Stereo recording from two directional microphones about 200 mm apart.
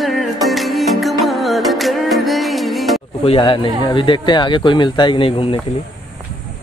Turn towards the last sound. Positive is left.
turn(degrees=25)  # may be behind; listen again after turning